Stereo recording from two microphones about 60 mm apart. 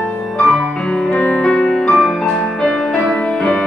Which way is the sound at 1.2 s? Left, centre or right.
Left.